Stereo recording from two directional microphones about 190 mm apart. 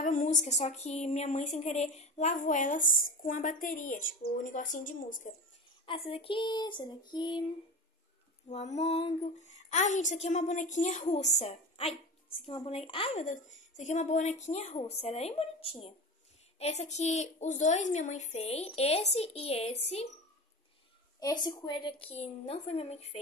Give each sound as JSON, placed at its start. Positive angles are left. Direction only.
{"t": 0.0, "sound": "speech", "side_deg": 40}
{"t": 5.9, "sound": "a woman's voice", "side_deg": 30}
{"t": 8.5, "sound": "speech", "side_deg": 35}
{"t": 21.2, "sound": "a woman's voice", "side_deg": 20}